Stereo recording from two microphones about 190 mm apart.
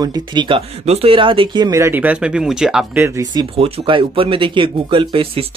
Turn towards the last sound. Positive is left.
turn(degrees=-30)  # may be behind; listen again after turning